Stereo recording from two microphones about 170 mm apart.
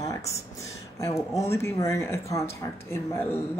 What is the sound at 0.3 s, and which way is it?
Speech, 20° left (ahead or behind).